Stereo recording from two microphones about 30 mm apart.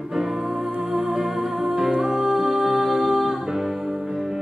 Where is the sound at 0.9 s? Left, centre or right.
Centre.